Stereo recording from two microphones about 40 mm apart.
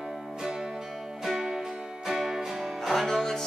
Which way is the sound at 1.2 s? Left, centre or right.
Centre.